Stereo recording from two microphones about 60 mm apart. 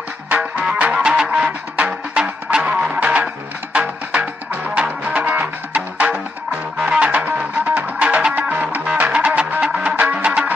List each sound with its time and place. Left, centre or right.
0.3 s music: right
5.0 s music: right